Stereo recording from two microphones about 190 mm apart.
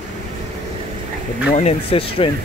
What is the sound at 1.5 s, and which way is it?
Speech, 35° left (ahead or behind).